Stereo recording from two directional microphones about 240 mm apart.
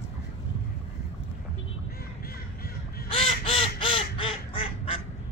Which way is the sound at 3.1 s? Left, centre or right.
Left.